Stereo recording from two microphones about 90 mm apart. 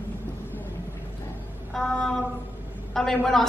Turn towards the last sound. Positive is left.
turn(degrees=5)  # may be behind; listen again after turning